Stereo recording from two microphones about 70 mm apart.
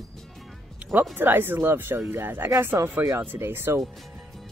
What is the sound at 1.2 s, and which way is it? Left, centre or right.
Speech, right.